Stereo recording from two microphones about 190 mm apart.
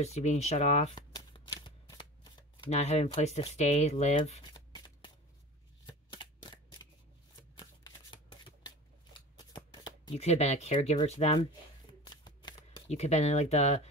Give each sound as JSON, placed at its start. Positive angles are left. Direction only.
{"t": 0.0, "sound": "speech", "side_deg": 35}
{"t": 1.1, "sound": "shuffling cards", "side_deg": 20}
{"t": 2.7, "sound": "speech", "side_deg": 35}
{"t": 4.7, "sound": "shuffling cards", "side_deg": 25}
{"t": 10.1, "sound": "speech", "side_deg": 35}
{"t": 12.1, "sound": "shuffling cards", "side_deg": 20}
{"t": 12.9, "sound": "speech", "side_deg": 35}